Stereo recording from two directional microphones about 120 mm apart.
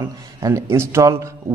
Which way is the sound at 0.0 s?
30° right (ahead or behind).